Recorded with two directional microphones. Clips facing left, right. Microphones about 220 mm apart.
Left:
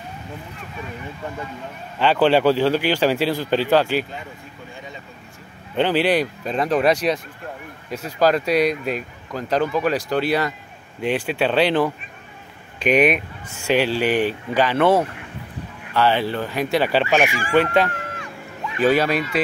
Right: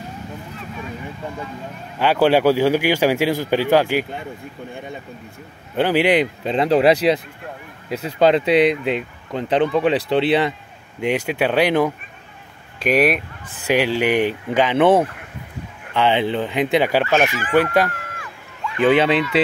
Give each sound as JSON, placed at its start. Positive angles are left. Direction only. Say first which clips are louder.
{"t": 2.0, "sound": "speech", "louder": "right 1 dB", "side_deg": -10}
{"t": 5.8, "sound": "speech", "louder": "right 2 dB", "side_deg": -10}
{"t": 11.0, "sound": "speech", "louder": "right 1 dB", "side_deg": -10}
{"t": 17.0, "sound": "fowl", "louder": "right 1 dB", "side_deg": 15}
{"t": 18.1, "sound": "a sound", "louder": "left 4 dB", "side_deg": 25}
{"t": 18.9, "sound": "speech", "louder": "right 3 dB", "side_deg": -20}